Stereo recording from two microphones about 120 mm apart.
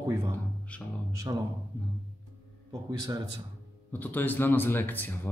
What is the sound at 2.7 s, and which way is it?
Speech, 30° right (ahead or behind).